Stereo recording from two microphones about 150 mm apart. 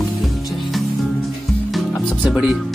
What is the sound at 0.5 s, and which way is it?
Music, centre (ahead or behind).